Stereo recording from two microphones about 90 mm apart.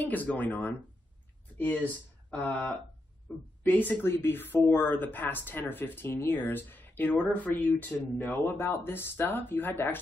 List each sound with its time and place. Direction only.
0.0 s speech: 20° left (ahead or behind)